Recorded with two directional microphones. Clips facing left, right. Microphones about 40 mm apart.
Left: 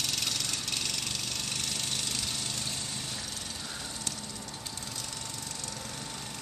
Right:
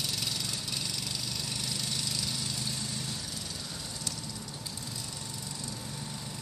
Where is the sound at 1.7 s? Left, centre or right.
Left.